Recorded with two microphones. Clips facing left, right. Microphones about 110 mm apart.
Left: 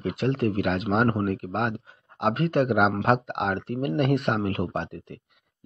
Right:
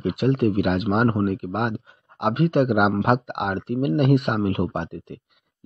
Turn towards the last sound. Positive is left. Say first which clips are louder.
# right 2 dB
turn(degrees=-20)  # may be behind; listen again after turning